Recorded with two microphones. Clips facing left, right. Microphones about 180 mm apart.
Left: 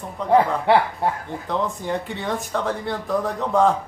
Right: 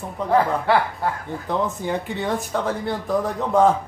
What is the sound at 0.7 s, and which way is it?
Speech, 25° left (ahead or behind).